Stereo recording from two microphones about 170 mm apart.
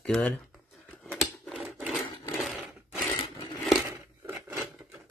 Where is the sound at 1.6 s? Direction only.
5° right (ahead or behind).